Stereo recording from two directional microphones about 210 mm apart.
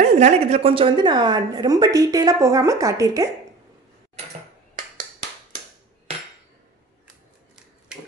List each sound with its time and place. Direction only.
0.0 s a woman's voice: 30° right (ahead or behind); by 3.3 s 15° right (ahead or behind)